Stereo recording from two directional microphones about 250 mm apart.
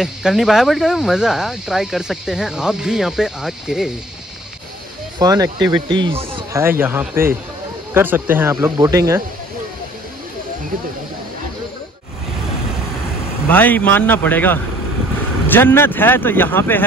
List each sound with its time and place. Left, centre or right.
0.0 s speech: centre
5.2 s speech: centre
6.6 s speech: centre
13.5 s speech: centre